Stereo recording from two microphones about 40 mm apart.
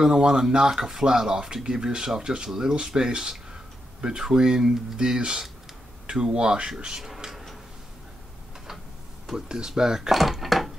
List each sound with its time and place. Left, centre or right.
0.0 s speech: centre
7.0 s a sound: centre
9.3 s speech: centre
10.1 s dishes: centre